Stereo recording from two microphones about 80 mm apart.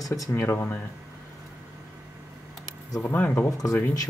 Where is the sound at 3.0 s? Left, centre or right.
Left.